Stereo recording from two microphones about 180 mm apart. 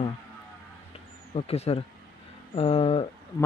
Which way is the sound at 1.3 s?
35° left (ahead or behind).